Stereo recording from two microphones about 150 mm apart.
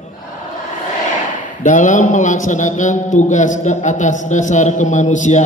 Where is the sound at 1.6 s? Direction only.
55° left (ahead or behind).